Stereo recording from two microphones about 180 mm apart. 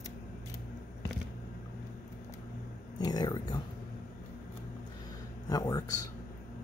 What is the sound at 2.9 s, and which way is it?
Speech, 20° left (ahead or behind).